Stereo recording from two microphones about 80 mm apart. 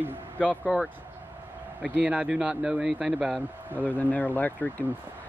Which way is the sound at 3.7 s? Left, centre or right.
Right.